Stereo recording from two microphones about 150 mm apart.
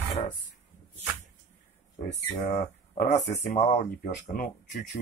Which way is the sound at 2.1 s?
50° left (ahead or behind).